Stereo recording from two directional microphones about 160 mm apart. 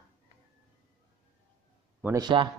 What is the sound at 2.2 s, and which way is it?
Speech, 30° right (ahead or behind).